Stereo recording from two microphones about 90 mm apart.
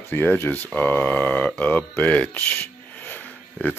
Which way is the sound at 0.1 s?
20° left (ahead or behind).